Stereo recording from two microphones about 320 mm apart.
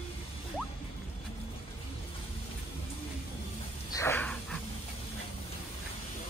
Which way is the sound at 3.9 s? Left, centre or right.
Centre.